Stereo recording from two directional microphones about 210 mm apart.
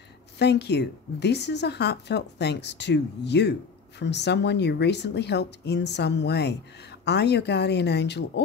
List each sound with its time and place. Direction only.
0.4 s speech: 50° left (ahead or behind)